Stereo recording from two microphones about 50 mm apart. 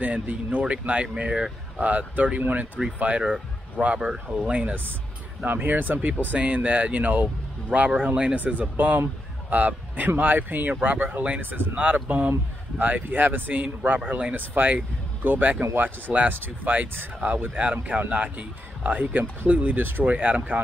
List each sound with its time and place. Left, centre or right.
0.0 s speech: right
5.4 s speech: right
15.6 s speech: right
16.3 s speech: right